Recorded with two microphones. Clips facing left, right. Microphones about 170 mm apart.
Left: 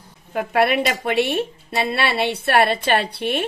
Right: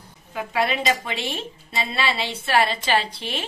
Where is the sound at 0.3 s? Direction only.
55° left (ahead or behind).